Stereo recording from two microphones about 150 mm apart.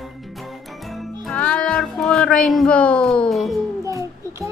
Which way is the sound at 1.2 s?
5° left (ahead or behind).